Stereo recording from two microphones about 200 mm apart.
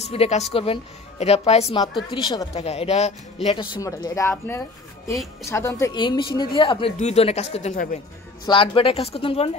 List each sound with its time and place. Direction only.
0.0 s a woman's voice: 30° left (ahead or behind)
8.5 s a woman's voice: 25° left (ahead or behind)